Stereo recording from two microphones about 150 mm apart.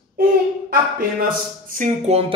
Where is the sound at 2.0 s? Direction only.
40° right (ahead or behind).